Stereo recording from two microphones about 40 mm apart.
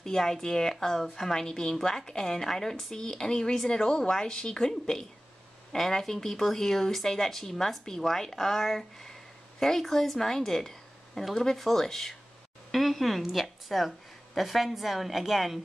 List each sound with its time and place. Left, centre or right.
0.0 s a woman's voice: centre